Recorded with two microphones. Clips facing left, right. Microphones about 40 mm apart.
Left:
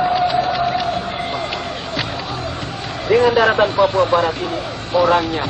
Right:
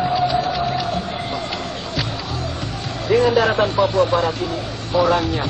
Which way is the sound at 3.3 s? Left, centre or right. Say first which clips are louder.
Left 2 dB; centre.